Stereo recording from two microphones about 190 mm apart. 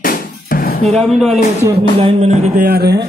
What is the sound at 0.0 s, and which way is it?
Music, 50° left (ahead or behind).